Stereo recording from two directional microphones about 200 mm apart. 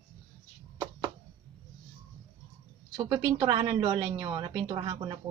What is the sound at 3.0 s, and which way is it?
Speech, 10° right (ahead or behind).